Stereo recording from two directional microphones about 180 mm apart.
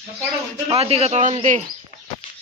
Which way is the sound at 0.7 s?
35° right (ahead or behind).